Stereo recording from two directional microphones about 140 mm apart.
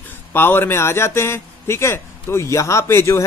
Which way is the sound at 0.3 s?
15° left (ahead or behind).